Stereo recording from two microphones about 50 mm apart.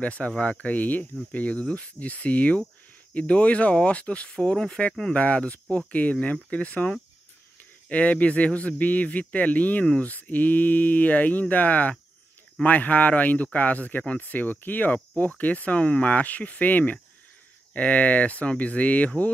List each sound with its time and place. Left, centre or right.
0.0 s speech: left
5.1 s speech: left